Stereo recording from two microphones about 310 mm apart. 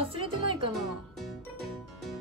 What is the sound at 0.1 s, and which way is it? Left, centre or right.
Speech, centre.